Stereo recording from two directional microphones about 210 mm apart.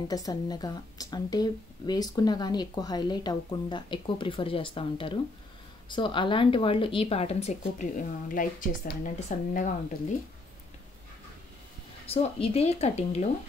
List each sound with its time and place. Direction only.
0.1 s speech: 15° left (ahead or behind); by 9.7 s 40° left (ahead or behind)
12.1 s speech: 30° left (ahead or behind)